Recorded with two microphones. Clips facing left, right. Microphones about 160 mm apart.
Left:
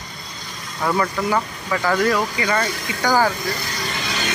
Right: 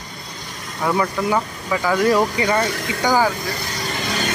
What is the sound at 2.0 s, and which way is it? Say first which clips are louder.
Speech: right 3 dB; 25° right (ahead or behind).